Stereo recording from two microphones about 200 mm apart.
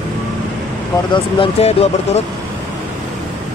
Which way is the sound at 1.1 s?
30° left (ahead or behind).